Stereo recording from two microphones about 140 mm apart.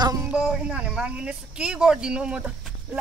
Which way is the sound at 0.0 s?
25° right (ahead or behind).